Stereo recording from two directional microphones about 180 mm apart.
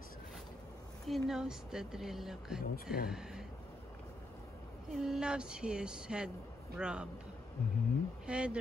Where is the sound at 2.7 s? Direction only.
55° left (ahead or behind).